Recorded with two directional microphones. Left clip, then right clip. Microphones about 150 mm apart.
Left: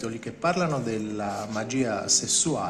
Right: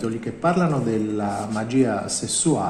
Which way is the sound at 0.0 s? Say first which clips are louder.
Right 4 dB; 25° left (ahead or behind).